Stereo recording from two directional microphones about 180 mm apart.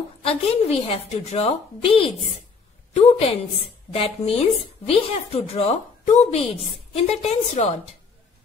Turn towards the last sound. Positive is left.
turn(degrees=40)  # may be behind; listen again after turning